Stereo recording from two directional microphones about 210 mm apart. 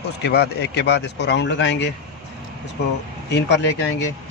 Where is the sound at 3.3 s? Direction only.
55° left (ahead or behind).